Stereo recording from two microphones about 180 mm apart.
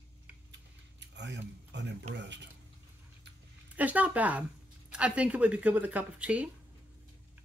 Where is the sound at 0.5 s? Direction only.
75° right (ahead or behind).